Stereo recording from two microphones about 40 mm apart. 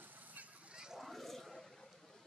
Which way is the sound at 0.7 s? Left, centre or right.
Centre.